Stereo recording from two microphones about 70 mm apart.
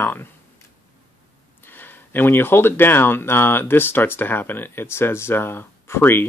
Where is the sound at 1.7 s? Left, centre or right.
Left.